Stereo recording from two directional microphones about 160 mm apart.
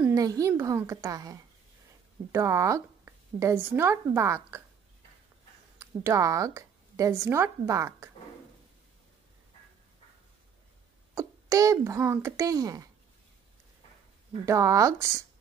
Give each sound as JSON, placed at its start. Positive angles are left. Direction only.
{"t": 0.1, "sound": "a child's voice", "side_deg": -20}
{"t": 5.8, "sound": "a woman's voice", "side_deg": -20}
{"t": 11.1, "sound": "a child's voice", "side_deg": -20}
{"t": 14.4, "sound": "a child's voice", "side_deg": -20}